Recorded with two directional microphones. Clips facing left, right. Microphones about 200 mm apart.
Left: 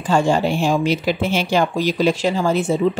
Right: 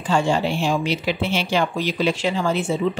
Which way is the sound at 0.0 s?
45° left (ahead or behind).